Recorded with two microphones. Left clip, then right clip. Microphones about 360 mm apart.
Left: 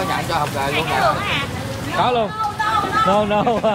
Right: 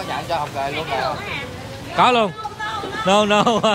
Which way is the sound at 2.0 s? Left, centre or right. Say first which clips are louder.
Right 3 dB; right.